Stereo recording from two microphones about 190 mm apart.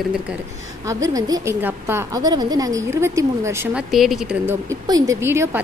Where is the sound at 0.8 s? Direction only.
20° right (ahead or behind).